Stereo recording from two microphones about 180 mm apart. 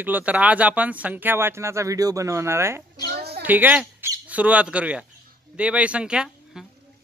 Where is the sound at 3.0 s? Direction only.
60° right (ahead or behind).